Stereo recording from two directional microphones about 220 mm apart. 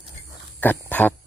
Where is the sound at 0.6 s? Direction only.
10° left (ahead or behind).